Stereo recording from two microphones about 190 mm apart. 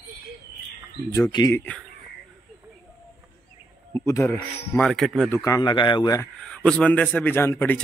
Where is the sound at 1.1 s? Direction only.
20° left (ahead or behind).